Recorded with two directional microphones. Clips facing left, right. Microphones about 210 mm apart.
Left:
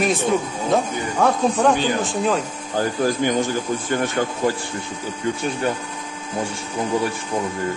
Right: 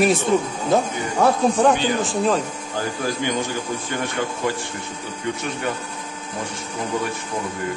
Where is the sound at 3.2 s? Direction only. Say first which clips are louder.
Left 4 dB; 45° left (ahead or behind).